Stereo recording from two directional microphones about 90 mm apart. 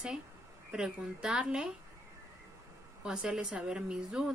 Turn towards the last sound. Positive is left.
turn(degrees=-10)  # may be behind; listen again after turning